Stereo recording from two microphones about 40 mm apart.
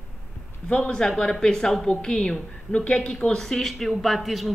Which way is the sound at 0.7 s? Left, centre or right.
Centre.